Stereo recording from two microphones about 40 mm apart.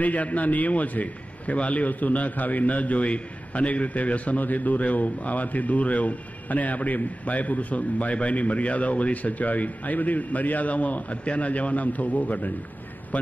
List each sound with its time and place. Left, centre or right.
0.0 s a man's voice: left